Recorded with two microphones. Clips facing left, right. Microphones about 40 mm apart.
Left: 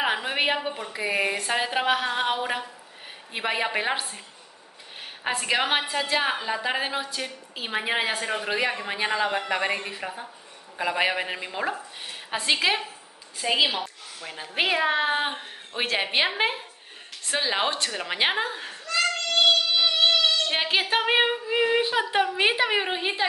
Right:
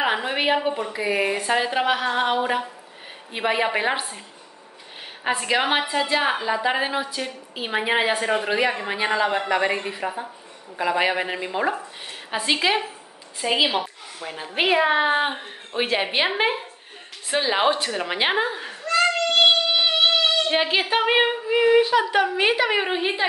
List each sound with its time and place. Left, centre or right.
0.0 s a sound: centre
0.9 s speech: centre
5.2 s a woman's voice: centre
18.9 s child singing: right
20.5 s speech: centre
21.8 s a woman's voice: centre